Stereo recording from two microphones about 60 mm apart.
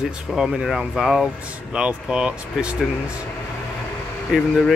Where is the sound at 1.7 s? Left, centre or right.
Centre.